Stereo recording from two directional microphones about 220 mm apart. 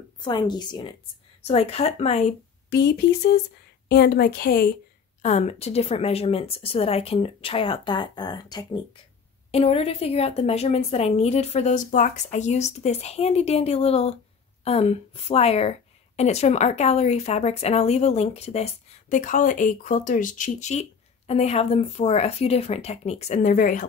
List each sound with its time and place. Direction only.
0.2 s a woman's voice: 20° left (ahead or behind)
2.7 s a woman's voice: 50° left (ahead or behind)
5.2 s a woman's voice: 30° left (ahead or behind)